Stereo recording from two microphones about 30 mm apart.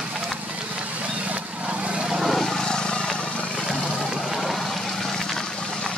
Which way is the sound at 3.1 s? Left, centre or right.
Left.